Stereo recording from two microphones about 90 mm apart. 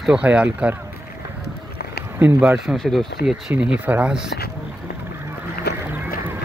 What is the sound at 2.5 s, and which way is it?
Speech, centre (ahead or behind).